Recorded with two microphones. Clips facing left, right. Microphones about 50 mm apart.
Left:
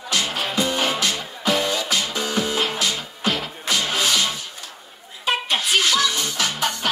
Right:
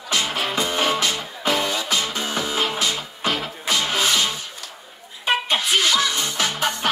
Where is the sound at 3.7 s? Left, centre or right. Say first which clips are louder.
Right 1 dB; right.